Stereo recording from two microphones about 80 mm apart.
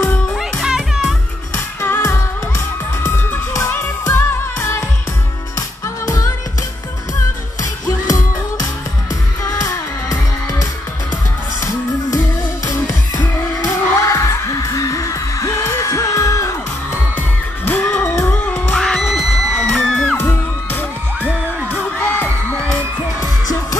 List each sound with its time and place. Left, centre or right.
0.4 s music: centre
1.5 s music: left
3.7 s music: left
9.4 s music: left
13.1 s music: left
13.9 s music: left
17.6 s music: centre
18.1 s music: left
18.7 s music: centre
20.2 s music: left
23.2 s music: left